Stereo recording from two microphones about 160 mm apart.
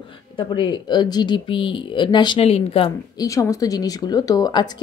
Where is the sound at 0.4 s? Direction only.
30° left (ahead or behind).